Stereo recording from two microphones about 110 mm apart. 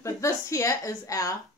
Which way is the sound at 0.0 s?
25° left (ahead or behind).